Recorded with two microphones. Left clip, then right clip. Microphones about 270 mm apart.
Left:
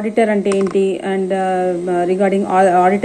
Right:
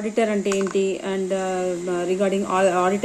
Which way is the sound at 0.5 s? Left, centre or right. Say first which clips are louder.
Left 6 dB; left.